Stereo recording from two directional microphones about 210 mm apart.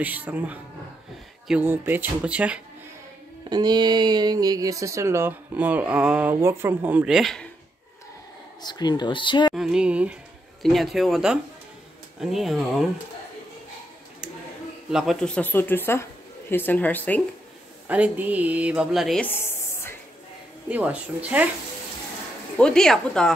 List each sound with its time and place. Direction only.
0.0 s speech: 10° right (ahead or behind)
3.4 s speech: 20° right (ahead or behind); by 7.4 s centre (ahead or behind)
8.6 s speech: 20° left (ahead or behind)
9.6 s speech: 5° right (ahead or behind)
14.9 s speech: centre (ahead or behind)
17.8 s speech: 5° right (ahead or behind); by 19.9 s 10° left (ahead or behind)
20.7 s speech: 5° right (ahead or behind)
22.6 s speech: 5° left (ahead or behind)